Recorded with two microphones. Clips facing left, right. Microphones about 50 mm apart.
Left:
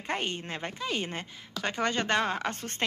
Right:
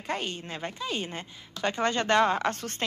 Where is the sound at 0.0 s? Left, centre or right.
Left.